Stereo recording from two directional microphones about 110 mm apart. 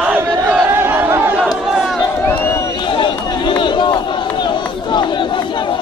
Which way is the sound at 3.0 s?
45° left (ahead or behind).